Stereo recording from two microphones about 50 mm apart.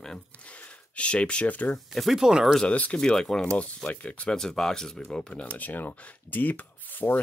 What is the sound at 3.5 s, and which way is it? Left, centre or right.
Speech, left.